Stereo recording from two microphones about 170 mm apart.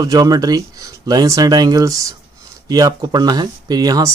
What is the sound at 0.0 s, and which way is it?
Speech, 20° right (ahead or behind).